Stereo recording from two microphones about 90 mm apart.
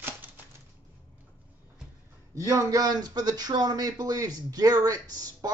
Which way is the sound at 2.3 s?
35° right (ahead or behind).